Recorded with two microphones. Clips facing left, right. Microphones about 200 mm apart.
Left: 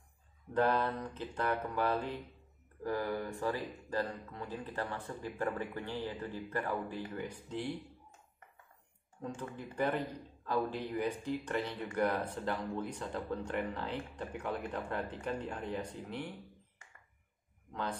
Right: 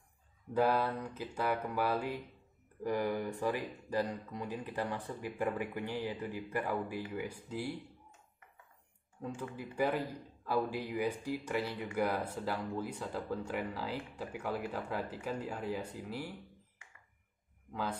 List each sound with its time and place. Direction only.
0.5 s speech: 10° right (ahead or behind)
9.2 s speech: 10° right (ahead or behind)